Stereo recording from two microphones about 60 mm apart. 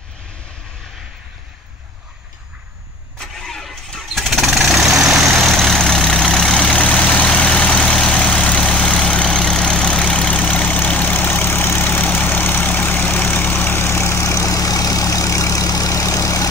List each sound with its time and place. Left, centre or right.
3.2 s vehicle: centre; by 11.9 s left
11.9 s vehicle: left